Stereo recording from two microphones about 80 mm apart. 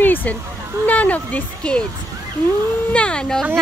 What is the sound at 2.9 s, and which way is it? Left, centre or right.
Speech, centre.